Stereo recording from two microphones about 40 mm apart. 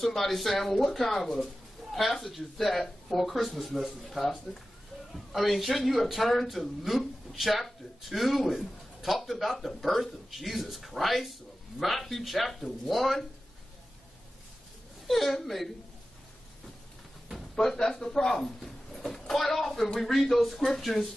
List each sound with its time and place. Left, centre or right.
0.0 s speech: centre
1.8 s a sound: centre
2.2 s a man's voice: centre
5.3 s a man's voice: centre
15.0 s a man's voice: centre
17.6 s a man's voice: centre